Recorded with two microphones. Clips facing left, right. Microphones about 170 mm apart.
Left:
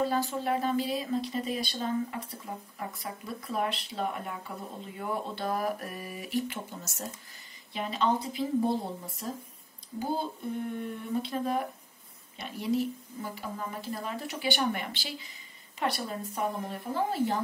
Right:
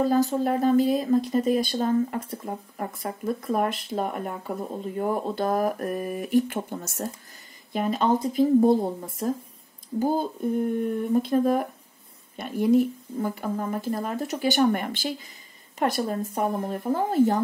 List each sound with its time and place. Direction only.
0.0 s speech: 40° right (ahead or behind)